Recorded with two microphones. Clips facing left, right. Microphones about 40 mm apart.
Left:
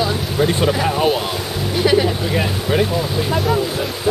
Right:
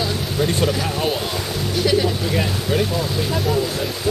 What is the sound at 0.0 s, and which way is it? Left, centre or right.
Speech, centre.